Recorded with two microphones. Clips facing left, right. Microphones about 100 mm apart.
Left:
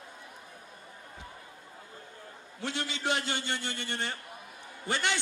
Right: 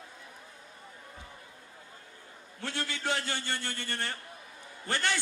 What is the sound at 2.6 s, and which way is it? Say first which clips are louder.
A man's voice: left 1 dB; 20° left (ahead or behind).